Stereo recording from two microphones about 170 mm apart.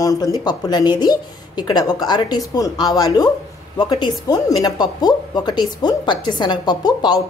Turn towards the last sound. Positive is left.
turn(degrees=25)  # may be behind; listen again after turning